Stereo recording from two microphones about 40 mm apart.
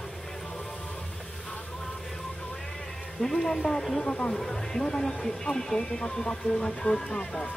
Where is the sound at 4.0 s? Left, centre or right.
Left.